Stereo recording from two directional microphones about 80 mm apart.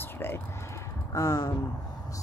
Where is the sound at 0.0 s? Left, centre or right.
Left.